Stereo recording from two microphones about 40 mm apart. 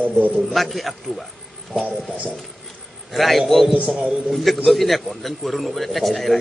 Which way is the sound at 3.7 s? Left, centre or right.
Right.